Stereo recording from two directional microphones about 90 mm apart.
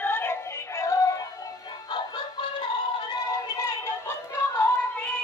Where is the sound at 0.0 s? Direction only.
25° left (ahead or behind).